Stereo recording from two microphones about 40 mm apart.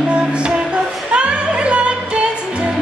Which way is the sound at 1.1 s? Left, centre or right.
Right.